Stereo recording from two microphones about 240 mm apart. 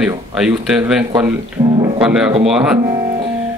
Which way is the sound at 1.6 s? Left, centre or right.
Right.